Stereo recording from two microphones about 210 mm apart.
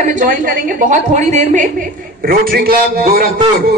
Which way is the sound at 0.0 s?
35° right (ahead or behind).